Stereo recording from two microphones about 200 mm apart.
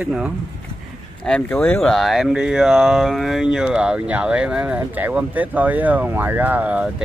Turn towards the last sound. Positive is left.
turn(degrees=-5)  # may be behind; listen again after turning